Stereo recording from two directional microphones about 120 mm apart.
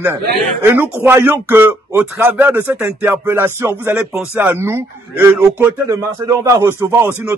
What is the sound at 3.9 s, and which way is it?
Speech, 10° right (ahead or behind).